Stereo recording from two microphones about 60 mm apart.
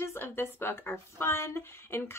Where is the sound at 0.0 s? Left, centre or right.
Left.